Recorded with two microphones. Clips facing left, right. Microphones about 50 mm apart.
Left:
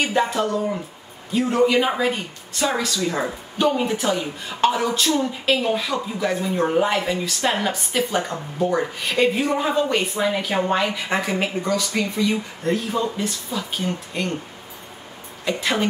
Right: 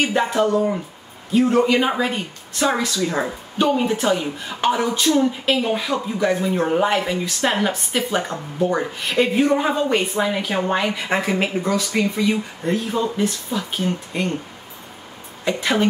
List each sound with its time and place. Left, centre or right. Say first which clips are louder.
0.0 s speech: right 2 dB; centre
0.5 s speech: right 4 dB; centre
1.3 s a woman's voice: right 2 dB; centre
8.5 s a woman's voice: right 1 dB; centre
9.1 s speech: right 3 dB; centre
15.4 s speech: right 3 dB; centre